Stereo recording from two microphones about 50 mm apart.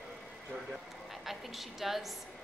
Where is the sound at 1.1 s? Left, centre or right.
Centre.